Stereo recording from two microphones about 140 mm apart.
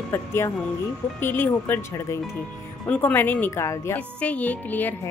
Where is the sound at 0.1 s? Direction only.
20° left (ahead or behind).